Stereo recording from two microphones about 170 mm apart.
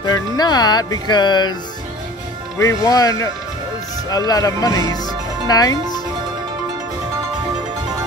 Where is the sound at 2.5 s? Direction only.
20° left (ahead or behind).